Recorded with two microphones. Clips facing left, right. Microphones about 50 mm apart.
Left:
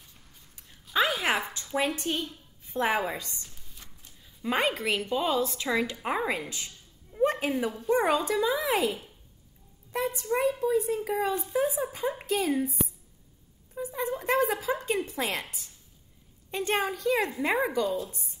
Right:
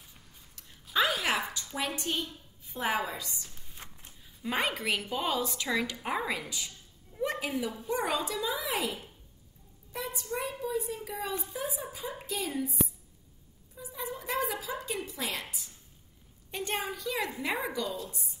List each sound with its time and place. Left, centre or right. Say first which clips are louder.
0.9 s a sound: left 2 dB; centre
1.2 s a sound: left 3 dB; left
2.0 s a woman's voice: left 3 dB; left
3.7 s a sound: right 3 dB; right
4.5 s speech: left 4 dB; left
4.7 s a woman's voice: left 4 dB; centre
5.6 s a woman's voice: left 3 dB; left
6.0 s speech: left 3 dB; left
7.2 s a sound: left 6 dB; left
7.9 s speech: left 7 dB; left
9.9 s a woman's voice: left 7 dB; left
13.7 s a woman's voice: left 8 dB; left
16.5 s a woman's voice: left 6 dB; left
17.8 s a woman's voice: left 6 dB; centre